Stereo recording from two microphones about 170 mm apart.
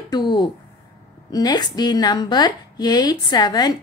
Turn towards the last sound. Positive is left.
turn(degrees=25)  # may be behind; listen again after turning